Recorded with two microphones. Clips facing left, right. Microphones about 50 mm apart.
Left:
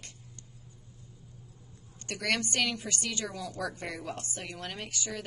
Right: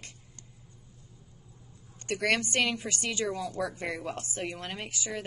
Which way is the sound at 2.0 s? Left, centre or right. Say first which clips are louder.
Right 4 dB; right.